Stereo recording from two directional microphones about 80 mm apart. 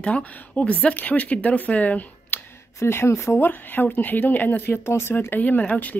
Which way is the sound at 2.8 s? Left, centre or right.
Left.